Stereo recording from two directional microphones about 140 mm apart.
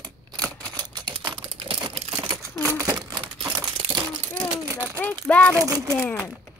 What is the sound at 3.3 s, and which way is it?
Crumpling, 30° right (ahead or behind).